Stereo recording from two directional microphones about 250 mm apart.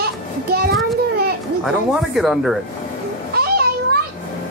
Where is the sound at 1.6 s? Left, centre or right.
Centre.